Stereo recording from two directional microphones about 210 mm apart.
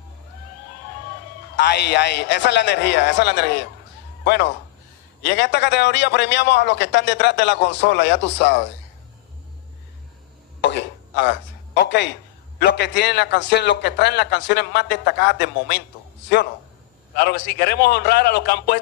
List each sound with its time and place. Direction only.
1.6 s a man's voice: 50° left (ahead or behind)
10.6 s a sound: 55° left (ahead or behind)
12.5 s a man's voice: 55° left (ahead or behind)
17.2 s a man's voice: 50° left (ahead or behind)